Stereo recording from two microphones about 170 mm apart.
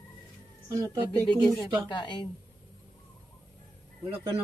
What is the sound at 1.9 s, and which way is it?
Speech, 25° left (ahead or behind).